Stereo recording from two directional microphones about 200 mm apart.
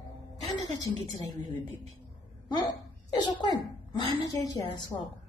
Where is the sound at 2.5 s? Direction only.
20° left (ahead or behind).